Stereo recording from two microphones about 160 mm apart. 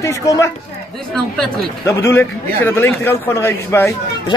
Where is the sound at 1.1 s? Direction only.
5° left (ahead or behind).